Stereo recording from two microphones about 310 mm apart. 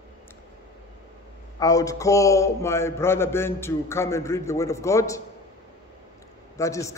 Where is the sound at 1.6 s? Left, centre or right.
Centre.